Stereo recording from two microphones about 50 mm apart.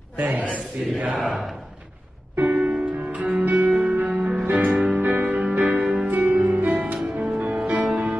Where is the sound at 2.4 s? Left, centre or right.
Right.